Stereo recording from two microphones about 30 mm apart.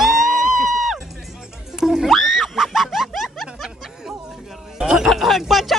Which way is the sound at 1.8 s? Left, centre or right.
Centre.